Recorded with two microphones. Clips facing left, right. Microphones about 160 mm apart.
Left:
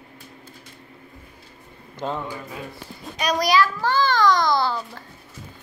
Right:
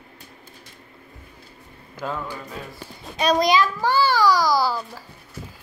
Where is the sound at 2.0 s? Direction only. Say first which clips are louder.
Left 2 dB; 30° left (ahead or behind).